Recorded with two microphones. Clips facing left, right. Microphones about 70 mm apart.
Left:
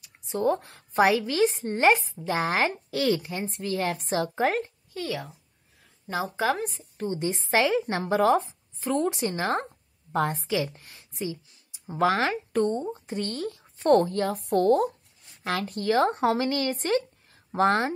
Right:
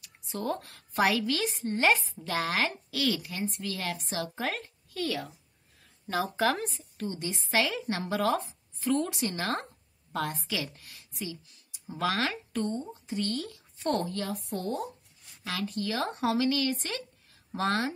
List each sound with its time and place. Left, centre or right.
0.0 s a woman's voice: left
4.9 s speech: centre
6.8 s a woman's voice: left
12.5 s a woman's voice: left
14.3 s speech: left
15.4 s a woman's voice: left